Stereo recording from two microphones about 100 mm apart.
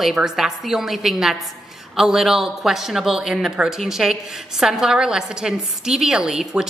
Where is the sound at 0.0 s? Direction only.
5° right (ahead or behind).